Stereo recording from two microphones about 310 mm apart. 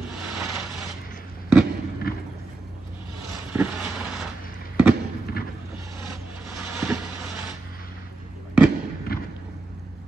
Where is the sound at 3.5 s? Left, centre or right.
Centre.